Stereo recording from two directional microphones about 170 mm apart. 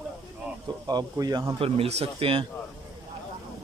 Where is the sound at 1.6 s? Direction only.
35° right (ahead or behind).